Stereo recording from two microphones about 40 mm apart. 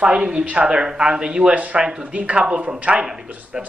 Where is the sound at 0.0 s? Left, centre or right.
Right.